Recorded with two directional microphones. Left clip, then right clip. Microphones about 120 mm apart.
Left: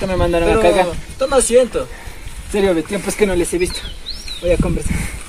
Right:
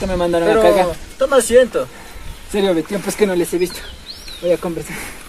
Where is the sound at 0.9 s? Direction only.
30° left (ahead or behind).